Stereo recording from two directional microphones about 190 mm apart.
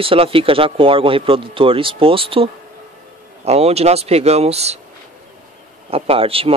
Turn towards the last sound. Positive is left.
turn(degrees=-30)  # may be behind; listen again after turning